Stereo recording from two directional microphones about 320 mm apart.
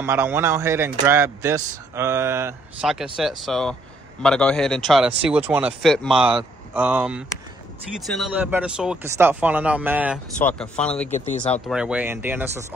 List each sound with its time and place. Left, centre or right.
0.0 s a man's voice: centre